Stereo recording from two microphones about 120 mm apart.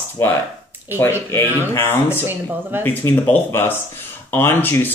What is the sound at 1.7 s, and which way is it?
Speech, 20° left (ahead or behind).